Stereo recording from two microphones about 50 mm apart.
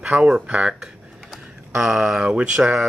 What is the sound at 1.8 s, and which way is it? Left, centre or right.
Speech, centre.